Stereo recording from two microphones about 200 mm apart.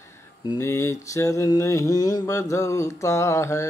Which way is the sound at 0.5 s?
15° left (ahead or behind).